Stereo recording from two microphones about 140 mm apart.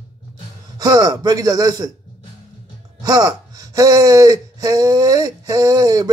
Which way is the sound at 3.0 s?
25° right (ahead or behind).